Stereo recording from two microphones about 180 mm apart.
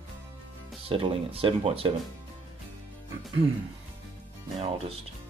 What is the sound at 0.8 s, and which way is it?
Speech, 30° right (ahead or behind).